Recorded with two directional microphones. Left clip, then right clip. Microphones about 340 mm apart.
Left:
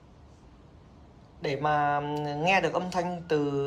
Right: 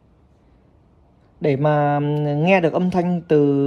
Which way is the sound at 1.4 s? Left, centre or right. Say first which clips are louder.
Right 8 dB; centre.